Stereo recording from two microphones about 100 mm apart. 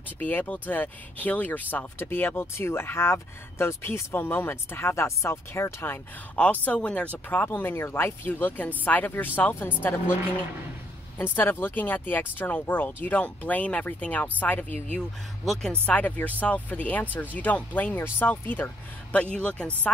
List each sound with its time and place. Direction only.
0.2 s speech: 20° left (ahead or behind)
6.3 s speech: 15° left (ahead or behind)
11.1 s speech: 20° left (ahead or behind)